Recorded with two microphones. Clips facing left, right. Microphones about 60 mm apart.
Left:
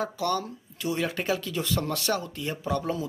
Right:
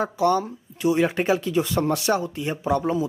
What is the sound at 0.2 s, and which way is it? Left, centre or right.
Speech, centre.